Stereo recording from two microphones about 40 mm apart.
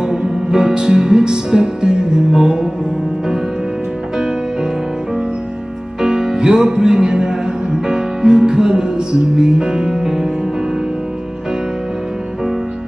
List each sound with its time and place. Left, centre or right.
0.0 s music: centre
5.9 s music: centre